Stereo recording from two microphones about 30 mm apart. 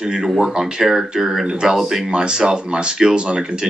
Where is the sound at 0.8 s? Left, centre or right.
Centre.